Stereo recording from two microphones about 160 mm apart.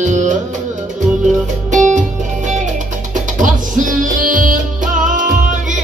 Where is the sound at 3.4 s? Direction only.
55° right (ahead or behind).